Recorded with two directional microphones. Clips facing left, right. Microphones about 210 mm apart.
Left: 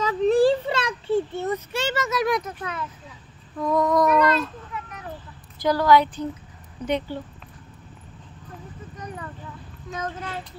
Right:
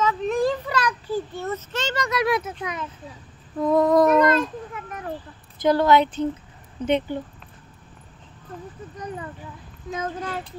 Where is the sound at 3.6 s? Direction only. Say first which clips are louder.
Right 3 dB; 30° right (ahead or behind).